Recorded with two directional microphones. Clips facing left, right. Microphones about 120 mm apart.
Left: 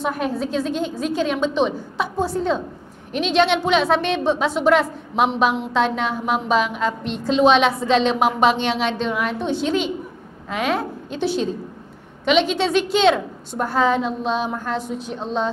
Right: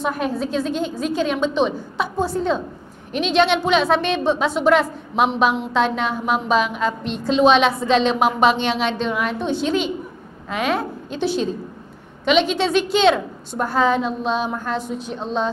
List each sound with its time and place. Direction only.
0.0 s a woman's voice: 20° right (ahead or behind)
12.3 s a woman's voice: 10° right (ahead or behind)